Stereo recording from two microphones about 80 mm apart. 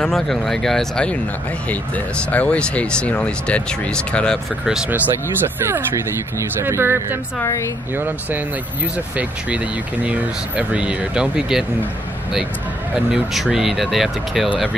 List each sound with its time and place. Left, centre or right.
0.0 s speech: centre
4.8 s speech: right
7.4 s speech: left
7.9 s speech: right; by 11.6 s centre
13.1 s speech: centre